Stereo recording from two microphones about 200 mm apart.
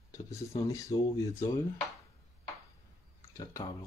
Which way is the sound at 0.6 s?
15° left (ahead or behind).